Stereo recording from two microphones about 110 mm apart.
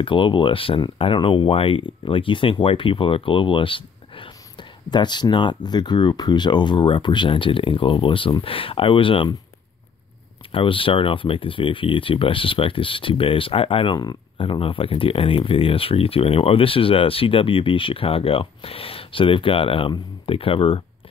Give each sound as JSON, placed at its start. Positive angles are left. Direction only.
{"t": 0.0, "sound": "speech", "side_deg": 50}
{"t": 10.5, "sound": "speech", "side_deg": 55}
{"t": 13.9, "sound": "speech", "side_deg": 45}